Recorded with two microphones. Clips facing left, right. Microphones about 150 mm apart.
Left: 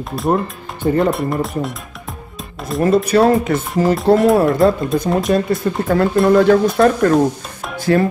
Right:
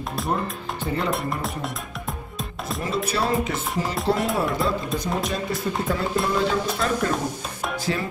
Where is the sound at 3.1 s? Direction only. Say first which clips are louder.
Left 11 dB; 55° left (ahead or behind).